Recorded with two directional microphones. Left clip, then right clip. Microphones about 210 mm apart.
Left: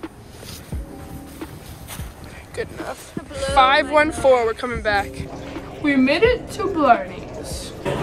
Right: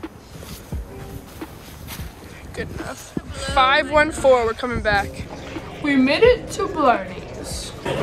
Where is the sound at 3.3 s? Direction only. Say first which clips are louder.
Left 6 dB; 15° left (ahead or behind).